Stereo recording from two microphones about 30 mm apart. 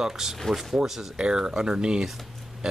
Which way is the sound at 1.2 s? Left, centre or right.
Right.